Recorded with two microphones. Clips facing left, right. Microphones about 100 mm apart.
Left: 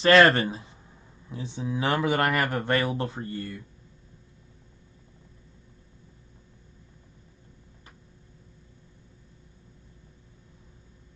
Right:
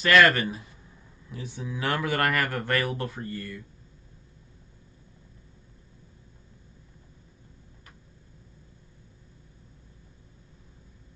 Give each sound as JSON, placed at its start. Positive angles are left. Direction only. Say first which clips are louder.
{"t": 0.0, "sound": "speech", "louder": "left 2 dB", "side_deg": 30}